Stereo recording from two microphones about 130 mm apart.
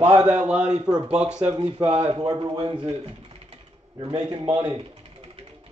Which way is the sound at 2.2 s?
40° right (ahead or behind).